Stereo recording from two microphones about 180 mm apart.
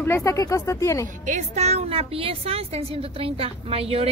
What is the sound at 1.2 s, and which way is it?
A woman's voice, 40° right (ahead or behind).